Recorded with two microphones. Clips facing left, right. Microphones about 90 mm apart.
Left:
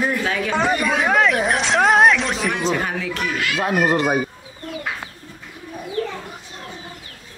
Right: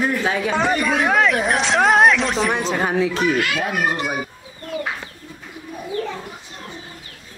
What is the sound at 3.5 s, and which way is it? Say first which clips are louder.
Speech: left 3 dB; 35° left (ahead or behind).